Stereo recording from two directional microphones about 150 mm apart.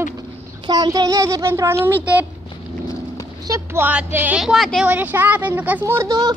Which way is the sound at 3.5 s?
10° right (ahead or behind).